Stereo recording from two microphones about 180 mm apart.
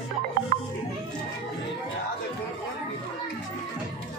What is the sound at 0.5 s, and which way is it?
Music, 45° right (ahead or behind).